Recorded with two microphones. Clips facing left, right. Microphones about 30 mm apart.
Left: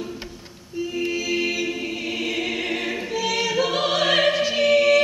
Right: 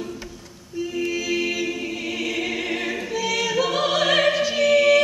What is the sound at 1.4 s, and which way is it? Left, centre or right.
Choir, centre.